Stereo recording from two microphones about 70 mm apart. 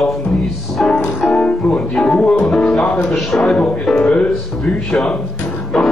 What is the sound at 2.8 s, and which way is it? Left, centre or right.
Speech, left.